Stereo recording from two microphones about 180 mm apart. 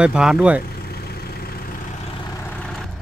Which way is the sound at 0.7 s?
60° left (ahead or behind).